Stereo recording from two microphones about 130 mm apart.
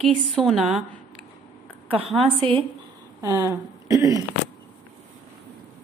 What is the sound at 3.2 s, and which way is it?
Speech, 25° right (ahead or behind).